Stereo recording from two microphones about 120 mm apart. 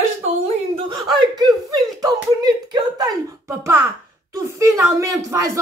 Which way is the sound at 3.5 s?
20° right (ahead or behind).